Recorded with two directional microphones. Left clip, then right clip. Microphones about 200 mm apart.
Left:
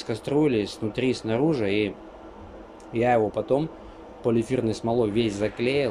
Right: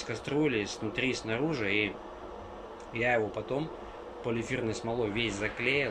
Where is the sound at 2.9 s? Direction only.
25° left (ahead or behind).